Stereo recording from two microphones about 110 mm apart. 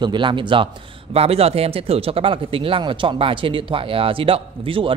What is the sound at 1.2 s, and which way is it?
Speech, 65° right (ahead or behind).